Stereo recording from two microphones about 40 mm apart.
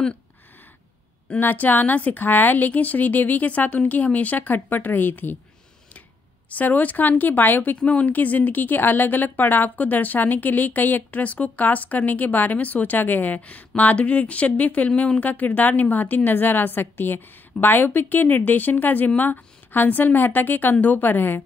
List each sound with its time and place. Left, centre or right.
1.4 s speech: left
6.5 s speech: left
7.7 s speech: left
14.9 s speech: left
15.1 s speech: left